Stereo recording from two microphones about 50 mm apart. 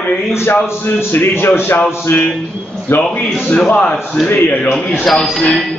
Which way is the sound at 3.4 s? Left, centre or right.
Left.